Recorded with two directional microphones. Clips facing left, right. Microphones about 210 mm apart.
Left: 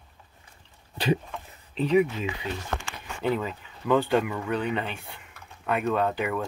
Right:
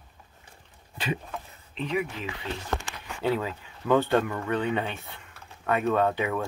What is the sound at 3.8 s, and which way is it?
Speech, 5° left (ahead or behind).